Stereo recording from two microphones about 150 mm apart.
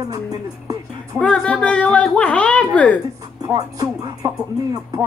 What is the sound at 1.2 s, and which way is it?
Speech, 10° left (ahead or behind).